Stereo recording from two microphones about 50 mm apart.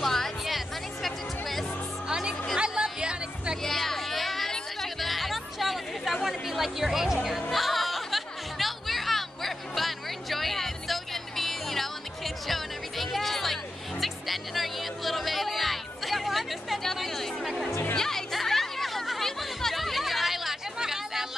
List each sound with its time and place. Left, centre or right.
0.0 s music: centre
2.0 s music: centre
3.6 s music: centre